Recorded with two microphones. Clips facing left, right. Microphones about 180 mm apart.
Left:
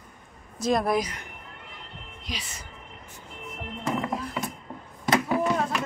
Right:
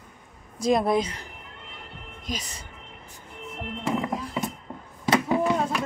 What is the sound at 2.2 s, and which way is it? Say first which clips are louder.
Music: right 4 dB; 45° right (ahead or behind).